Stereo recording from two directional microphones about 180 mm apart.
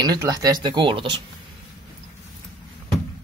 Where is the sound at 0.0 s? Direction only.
20° right (ahead or behind).